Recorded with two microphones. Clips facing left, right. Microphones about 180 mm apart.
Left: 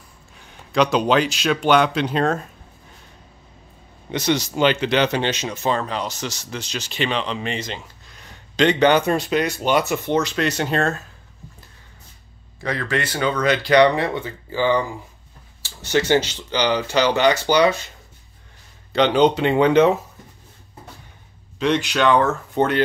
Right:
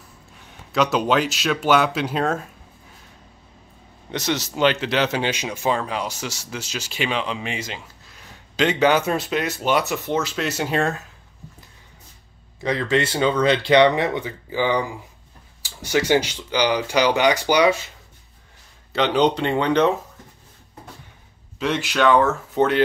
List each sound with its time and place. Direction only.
0.5 s speech: 5° right (ahead or behind)
4.1 s speech: centre (ahead or behind)
12.5 s speech: 20° right (ahead or behind)
18.9 s speech: centre (ahead or behind)
21.5 s speech: 5° right (ahead or behind)